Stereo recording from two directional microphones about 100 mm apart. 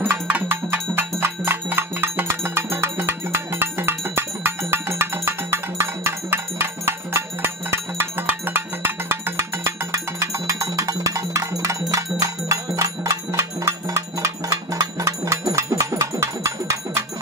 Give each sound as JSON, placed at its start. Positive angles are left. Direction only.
{"t": 0.1, "sound": "bell", "side_deg": -20}